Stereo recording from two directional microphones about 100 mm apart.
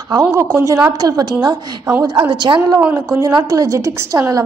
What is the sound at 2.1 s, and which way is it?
Speech, 50° right (ahead or behind).